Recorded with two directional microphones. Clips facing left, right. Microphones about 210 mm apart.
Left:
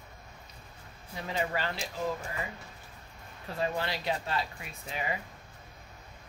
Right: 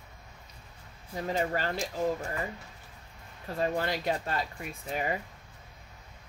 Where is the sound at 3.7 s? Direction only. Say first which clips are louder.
Right 3 dB; 45° right (ahead or behind).